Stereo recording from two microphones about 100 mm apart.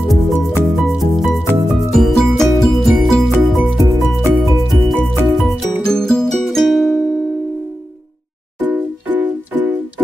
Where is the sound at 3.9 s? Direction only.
25° right (ahead or behind).